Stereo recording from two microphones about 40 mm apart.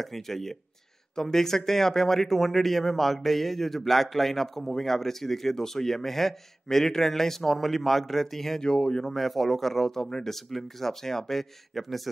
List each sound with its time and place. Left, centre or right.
0.0 s speech: centre
9.0 s speech: centre